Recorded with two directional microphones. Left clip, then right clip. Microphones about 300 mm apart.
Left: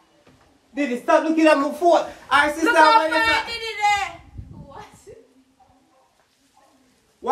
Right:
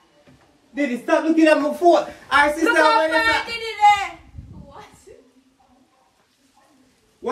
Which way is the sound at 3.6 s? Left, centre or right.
Centre.